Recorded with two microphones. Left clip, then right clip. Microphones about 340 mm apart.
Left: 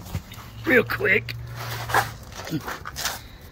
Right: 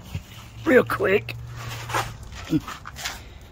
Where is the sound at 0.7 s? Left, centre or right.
Centre.